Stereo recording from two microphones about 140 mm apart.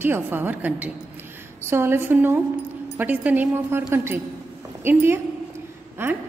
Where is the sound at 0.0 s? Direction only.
15° right (ahead or behind).